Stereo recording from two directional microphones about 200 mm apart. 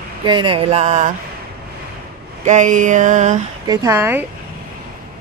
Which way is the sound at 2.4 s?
40° right (ahead or behind).